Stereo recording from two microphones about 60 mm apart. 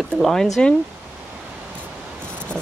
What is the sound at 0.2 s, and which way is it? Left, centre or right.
Speech, centre.